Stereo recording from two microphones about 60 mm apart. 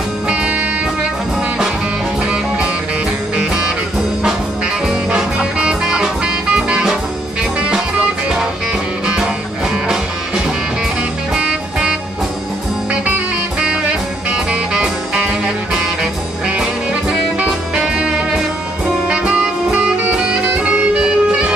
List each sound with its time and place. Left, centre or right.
0.3 s music: right
4.8 s music: centre
11.3 s music: centre
14.3 s music: centre
19.0 s saxophone: centre
21.0 s music: centre